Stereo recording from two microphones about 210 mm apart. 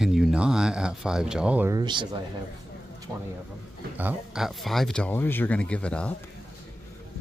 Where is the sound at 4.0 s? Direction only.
5° right (ahead or behind).